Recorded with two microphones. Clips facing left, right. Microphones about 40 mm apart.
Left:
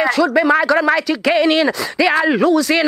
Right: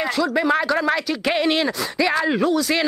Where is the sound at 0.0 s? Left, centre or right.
Left.